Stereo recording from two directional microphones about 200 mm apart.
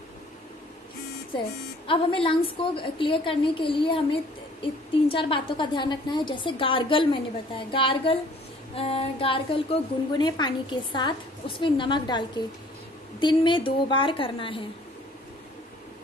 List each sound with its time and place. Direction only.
1.9 s a woman's voice: 25° left (ahead or behind)